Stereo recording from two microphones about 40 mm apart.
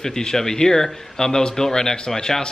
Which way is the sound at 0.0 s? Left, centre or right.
Centre.